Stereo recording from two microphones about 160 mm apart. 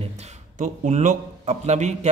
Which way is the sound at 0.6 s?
50° right (ahead or behind).